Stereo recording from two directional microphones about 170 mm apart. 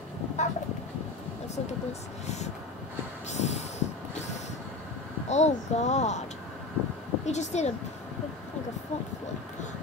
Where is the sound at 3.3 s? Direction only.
40° left (ahead or behind).